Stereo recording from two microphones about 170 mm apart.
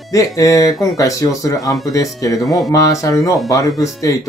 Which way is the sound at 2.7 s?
20° left (ahead or behind).